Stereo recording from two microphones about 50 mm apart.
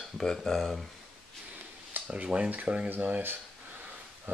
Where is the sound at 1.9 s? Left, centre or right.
Right.